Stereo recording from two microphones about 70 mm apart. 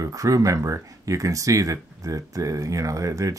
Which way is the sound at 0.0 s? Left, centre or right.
Right.